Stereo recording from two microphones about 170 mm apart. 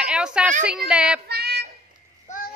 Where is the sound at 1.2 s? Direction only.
70° right (ahead or behind).